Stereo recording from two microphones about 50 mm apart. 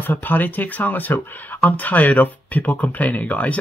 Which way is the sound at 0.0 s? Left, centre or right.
Left.